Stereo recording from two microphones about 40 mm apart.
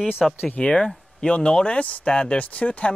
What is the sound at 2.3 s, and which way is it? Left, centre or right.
Speech, left.